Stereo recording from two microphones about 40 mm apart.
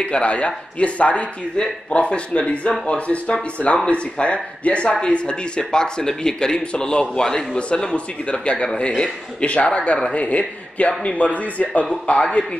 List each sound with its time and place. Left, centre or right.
0.0 s a man's voice: left
7.5 s a man's voice: left